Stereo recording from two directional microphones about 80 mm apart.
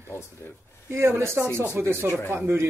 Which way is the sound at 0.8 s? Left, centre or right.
Right.